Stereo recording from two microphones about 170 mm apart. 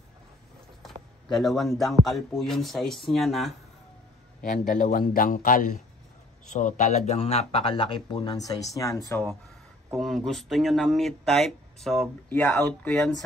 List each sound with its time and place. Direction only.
1.3 s speech: centre (ahead or behind)
4.5 s speech: 50° left (ahead or behind); by 9.2 s 20° left (ahead or behind)
9.9 s speech: centre (ahead or behind)
12.4 s speech: 15° left (ahead or behind)
12.6 s speech: 5° left (ahead or behind)